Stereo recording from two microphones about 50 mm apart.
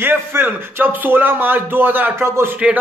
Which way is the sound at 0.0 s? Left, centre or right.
Right.